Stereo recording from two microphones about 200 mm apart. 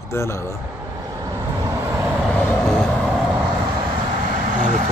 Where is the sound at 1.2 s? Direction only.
20° right (ahead or behind).